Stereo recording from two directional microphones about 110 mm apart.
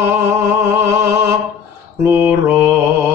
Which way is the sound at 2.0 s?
20° right (ahead or behind).